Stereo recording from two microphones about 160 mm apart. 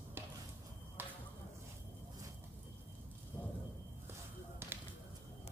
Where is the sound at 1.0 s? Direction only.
15° right (ahead or behind).